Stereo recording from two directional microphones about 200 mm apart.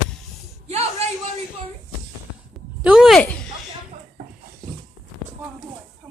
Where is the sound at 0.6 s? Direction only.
30° right (ahead or behind).